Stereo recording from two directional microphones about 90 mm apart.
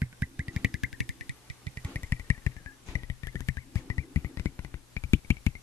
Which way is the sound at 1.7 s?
25° left (ahead or behind).